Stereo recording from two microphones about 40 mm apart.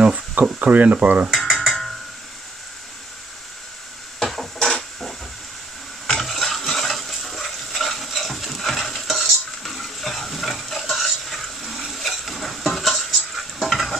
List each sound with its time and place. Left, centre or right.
0.1 s speech: right
1.3 s stir: centre
4.6 s printer: centre
6.0 s stir: centre
11.9 s a sound: centre
12.6 s stir: centre